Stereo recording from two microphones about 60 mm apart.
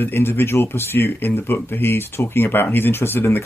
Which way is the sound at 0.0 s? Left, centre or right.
Left.